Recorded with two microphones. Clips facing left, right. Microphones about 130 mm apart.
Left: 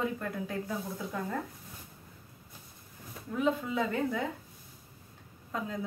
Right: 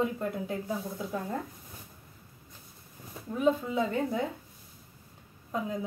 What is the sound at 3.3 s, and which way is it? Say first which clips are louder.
Speech: right 3 dB; 20° right (ahead or behind).